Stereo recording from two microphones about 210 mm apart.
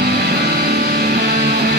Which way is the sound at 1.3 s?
45° right (ahead or behind).